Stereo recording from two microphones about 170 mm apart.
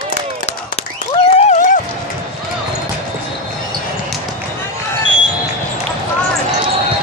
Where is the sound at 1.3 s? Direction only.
45° left (ahead or behind).